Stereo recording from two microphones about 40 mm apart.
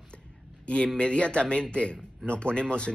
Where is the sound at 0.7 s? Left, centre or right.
Left.